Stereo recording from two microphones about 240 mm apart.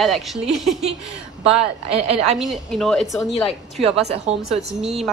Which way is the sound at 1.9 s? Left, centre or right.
Right.